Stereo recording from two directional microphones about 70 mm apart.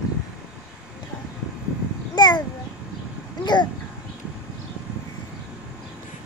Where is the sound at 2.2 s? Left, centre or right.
Left.